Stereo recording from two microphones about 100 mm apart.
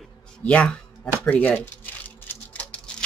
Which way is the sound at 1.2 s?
15° left (ahead or behind).